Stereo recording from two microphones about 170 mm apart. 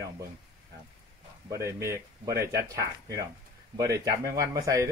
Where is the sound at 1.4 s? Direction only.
15° right (ahead or behind).